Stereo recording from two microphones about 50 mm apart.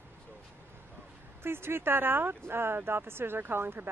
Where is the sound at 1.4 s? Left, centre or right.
Right.